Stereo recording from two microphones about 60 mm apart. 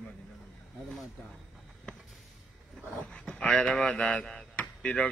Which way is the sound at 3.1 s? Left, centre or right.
Centre.